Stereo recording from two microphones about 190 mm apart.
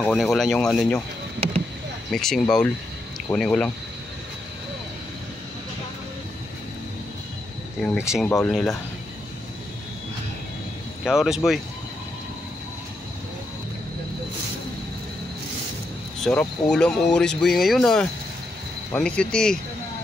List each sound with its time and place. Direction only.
0.0 s speech: centre (ahead or behind)
2.0 s speech: centre (ahead or behind)
8.2 s speech: centre (ahead or behind)
11.1 s speech: centre (ahead or behind)
16.3 s speech: 5° left (ahead or behind)